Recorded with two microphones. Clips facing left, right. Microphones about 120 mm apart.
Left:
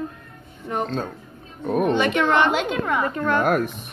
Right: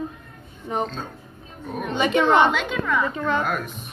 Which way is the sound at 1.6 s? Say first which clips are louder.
Left 9 dB; 60° left (ahead or behind).